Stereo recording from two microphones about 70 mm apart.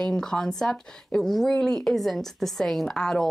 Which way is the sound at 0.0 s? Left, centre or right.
Centre.